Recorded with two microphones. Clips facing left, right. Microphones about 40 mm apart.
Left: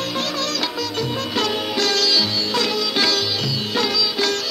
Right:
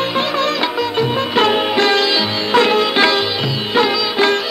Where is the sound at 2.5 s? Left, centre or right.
Right.